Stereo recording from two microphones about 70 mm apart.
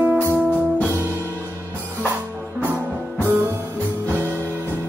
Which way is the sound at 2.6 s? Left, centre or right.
Right.